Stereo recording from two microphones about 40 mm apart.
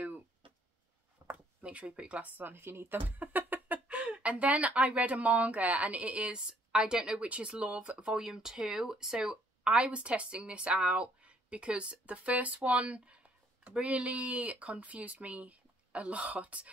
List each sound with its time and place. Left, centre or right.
1.3 s a sound: right
2.2 s speech: right
2.5 s speech: right
3.1 s speech: right
6.7 s speech: centre
8.0 s speech: centre; by 16.7 s right